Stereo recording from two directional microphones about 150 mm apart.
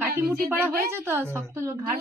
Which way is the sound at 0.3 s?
15° right (ahead or behind).